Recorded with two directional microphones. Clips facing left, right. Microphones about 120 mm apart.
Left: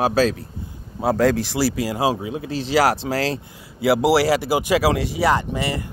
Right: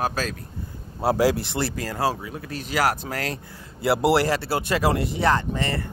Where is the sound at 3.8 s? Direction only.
Centre (ahead or behind).